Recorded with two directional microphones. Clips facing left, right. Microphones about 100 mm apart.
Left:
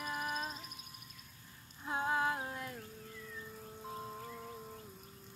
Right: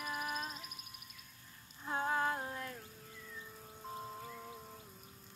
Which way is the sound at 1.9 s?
5° left (ahead or behind).